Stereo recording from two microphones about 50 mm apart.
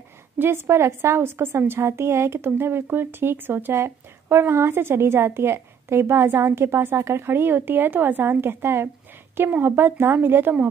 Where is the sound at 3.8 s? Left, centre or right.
Right.